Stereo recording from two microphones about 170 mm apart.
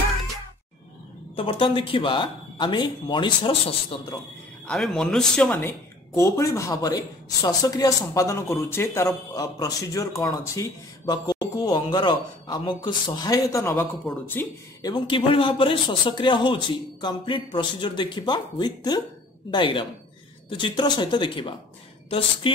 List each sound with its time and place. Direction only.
1.3 s speech: 30° left (ahead or behind)
4.6 s speech: 5° left (ahead or behind)
14.8 s speech: 25° left (ahead or behind)